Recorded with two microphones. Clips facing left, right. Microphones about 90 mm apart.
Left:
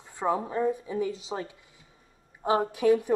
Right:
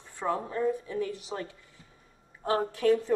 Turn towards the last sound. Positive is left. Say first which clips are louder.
# left 2 dB
turn(degrees=15)  # may be behind; listen again after turning